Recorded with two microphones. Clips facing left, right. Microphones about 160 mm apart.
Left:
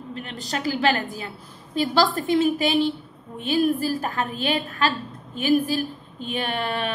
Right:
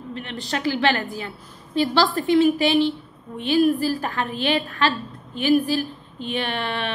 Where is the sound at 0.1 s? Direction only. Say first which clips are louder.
Right 2 dB; 45° left (ahead or behind).